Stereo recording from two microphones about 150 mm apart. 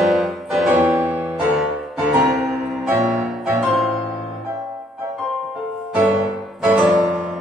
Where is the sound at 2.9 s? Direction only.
20° right (ahead or behind).